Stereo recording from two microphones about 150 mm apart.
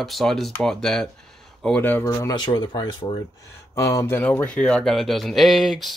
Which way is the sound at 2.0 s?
25° left (ahead or behind).